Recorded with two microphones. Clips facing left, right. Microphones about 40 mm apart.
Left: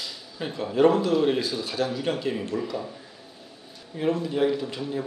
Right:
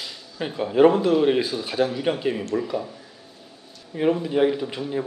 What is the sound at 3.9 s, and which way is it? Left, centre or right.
Speech, centre.